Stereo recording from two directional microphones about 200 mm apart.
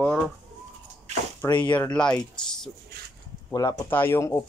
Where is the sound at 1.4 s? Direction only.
20° left (ahead or behind).